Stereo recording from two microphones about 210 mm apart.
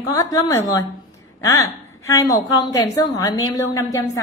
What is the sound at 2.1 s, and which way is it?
A woman's voice, 15° left (ahead or behind).